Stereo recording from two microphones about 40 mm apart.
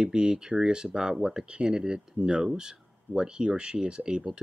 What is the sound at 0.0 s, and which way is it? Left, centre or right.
Speech, right.